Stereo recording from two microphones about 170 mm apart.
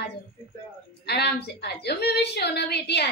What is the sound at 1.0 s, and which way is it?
A woman's voice, 75° left (ahead or behind).